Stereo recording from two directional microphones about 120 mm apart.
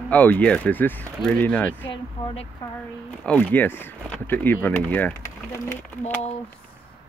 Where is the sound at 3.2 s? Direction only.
10° left (ahead or behind).